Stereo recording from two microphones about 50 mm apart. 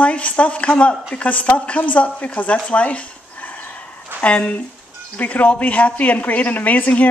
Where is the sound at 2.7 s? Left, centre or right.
Left.